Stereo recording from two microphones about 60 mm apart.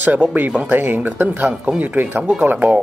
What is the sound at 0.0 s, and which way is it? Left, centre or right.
Speech, right.